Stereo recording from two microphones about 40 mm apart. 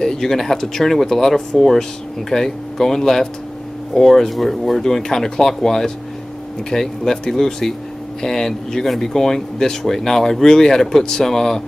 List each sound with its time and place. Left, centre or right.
0.0 s speech: centre